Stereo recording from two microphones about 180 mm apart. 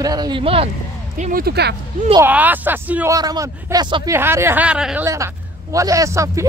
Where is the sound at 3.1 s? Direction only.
20° right (ahead or behind).